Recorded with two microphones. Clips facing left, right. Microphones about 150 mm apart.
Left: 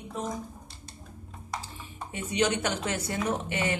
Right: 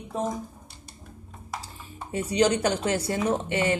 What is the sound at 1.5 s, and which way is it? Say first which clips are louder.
Music: even; centre (ahead or behind).